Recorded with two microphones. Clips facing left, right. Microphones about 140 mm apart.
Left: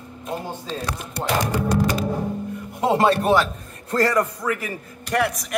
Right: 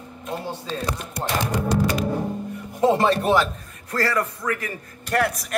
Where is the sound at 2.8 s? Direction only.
70° left (ahead or behind).